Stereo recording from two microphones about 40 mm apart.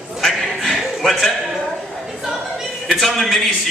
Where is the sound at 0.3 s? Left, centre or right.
Centre.